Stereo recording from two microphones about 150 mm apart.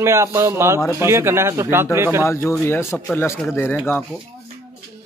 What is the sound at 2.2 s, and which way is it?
Speech, 20° left (ahead or behind).